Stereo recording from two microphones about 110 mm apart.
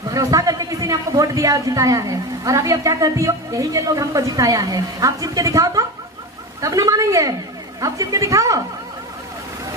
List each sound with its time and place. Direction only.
0.1 s a woman's voice: 30° right (ahead or behind)